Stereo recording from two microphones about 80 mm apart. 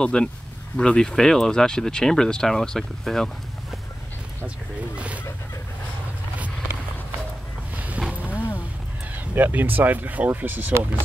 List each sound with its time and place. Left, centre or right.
0.0 s speech: centre
4.9 s a sound: centre
7.7 s boat: centre
9.3 s speech: right